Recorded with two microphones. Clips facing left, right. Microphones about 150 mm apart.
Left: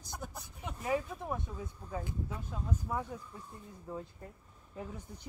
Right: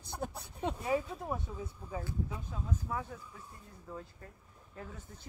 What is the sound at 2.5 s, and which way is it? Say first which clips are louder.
Speech: left 2 dB; 10° left (ahead or behind).